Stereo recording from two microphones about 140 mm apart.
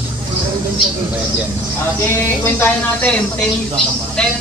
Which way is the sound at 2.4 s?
10° left (ahead or behind).